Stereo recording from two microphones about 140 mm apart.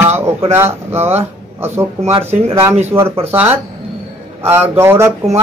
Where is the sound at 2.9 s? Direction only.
20° right (ahead or behind).